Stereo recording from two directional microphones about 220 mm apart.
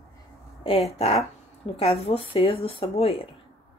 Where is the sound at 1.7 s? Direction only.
25° left (ahead or behind).